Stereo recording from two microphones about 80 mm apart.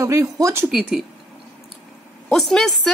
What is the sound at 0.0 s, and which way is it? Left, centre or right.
Speech, right.